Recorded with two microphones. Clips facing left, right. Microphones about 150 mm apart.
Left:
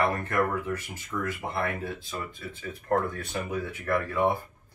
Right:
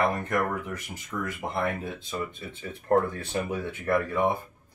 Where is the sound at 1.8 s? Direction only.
20° right (ahead or behind).